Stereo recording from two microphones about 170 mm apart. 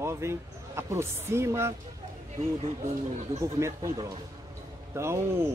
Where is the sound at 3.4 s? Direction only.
15° right (ahead or behind).